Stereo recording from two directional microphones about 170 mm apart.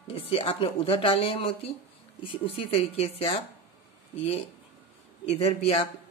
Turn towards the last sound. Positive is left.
turn(degrees=35)  # may be behind; listen again after turning